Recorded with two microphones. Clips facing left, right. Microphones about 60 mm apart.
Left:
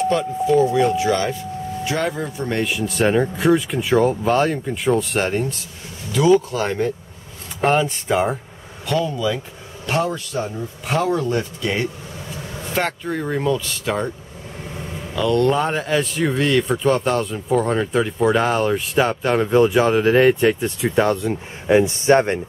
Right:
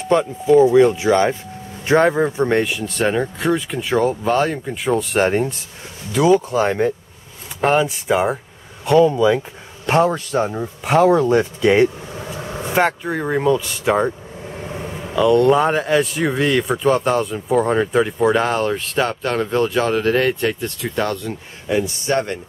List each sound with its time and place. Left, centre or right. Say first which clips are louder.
0.1 s speech: right 9 dB; centre
2.6 s speech: left 1 dB; centre
6.1 s speech: right 1 dB; centre
7.6 s speech: right 1 dB; centre
8.8 s speech: right 8 dB; right
10.0 s speech: right 6 dB; right
10.8 s speech: right 7 dB; centre
12.7 s speech: right 4 dB; centre
15.1 s speech: right 4 dB; centre
21.6 s speech: left 5 dB; left